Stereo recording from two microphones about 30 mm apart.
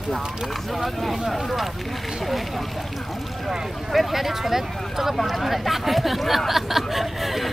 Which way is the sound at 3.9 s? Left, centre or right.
Centre.